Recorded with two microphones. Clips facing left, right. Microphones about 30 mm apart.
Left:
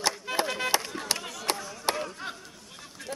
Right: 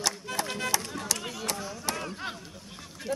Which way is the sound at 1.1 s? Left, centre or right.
Left.